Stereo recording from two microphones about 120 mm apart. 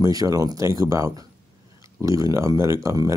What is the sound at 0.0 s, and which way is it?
Speech, 30° right (ahead or behind).